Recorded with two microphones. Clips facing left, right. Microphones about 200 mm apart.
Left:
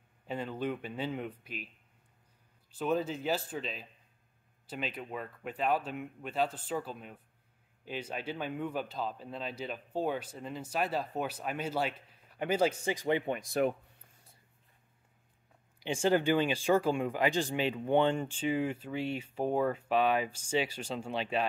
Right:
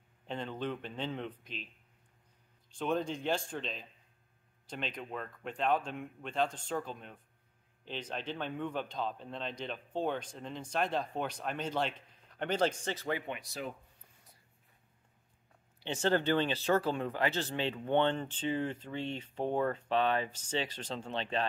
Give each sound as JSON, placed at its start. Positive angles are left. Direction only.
{"t": 0.3, "sound": "speech", "side_deg": 5}
{"t": 2.7, "sound": "speech", "side_deg": 5}
{"t": 13.3, "sound": "speech", "side_deg": 50}
{"t": 15.8, "sound": "speech", "side_deg": 10}